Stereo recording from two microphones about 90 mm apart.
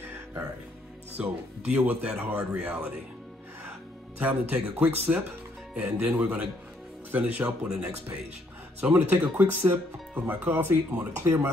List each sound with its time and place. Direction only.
1.1 s speech: 15° right (ahead or behind)
4.2 s speech: 20° right (ahead or behind)